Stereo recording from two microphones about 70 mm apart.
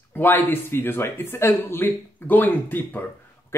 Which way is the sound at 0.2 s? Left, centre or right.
Left.